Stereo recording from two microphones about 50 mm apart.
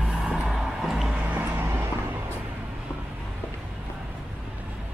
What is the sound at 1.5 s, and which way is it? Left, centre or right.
Vehicle, right.